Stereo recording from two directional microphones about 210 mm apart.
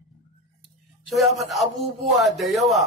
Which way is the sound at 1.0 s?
Centre (ahead or behind).